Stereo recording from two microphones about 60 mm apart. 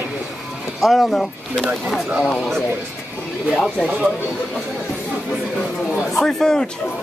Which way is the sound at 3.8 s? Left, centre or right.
Centre.